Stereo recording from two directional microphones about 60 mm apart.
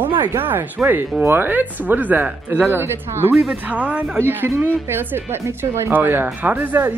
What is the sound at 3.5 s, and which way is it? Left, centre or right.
Speech, right.